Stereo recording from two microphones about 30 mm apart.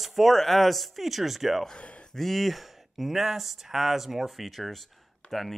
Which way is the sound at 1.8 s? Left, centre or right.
Left.